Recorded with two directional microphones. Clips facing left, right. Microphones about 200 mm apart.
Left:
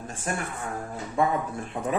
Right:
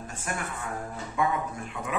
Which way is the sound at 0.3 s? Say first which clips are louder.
Left 3 dB; 35° left (ahead or behind).